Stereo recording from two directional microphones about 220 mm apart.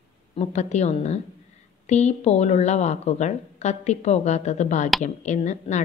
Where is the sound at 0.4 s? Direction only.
30° left (ahead or behind).